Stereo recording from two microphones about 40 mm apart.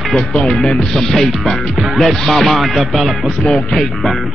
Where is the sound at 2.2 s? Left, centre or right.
Centre.